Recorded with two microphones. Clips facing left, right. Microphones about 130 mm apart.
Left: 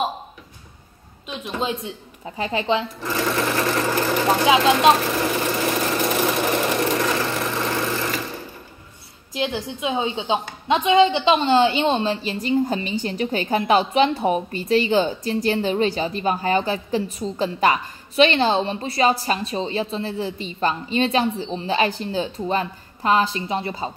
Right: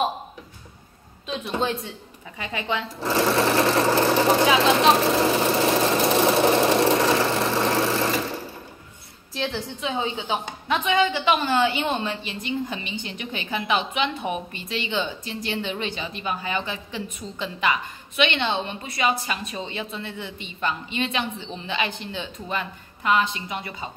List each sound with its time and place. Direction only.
1.6 s a woman's voice: 20° left (ahead or behind)
2.2 s a woman's voice: 35° left (ahead or behind)
3.0 s speech: 30° right (ahead or behind)
3.6 s sewing machine: 30° right (ahead or behind)
4.5 s speech: 15° left (ahead or behind)
5.0 s sewing machine: 25° right (ahead or behind)
9.3 s a woman's voice: 15° left (ahead or behind)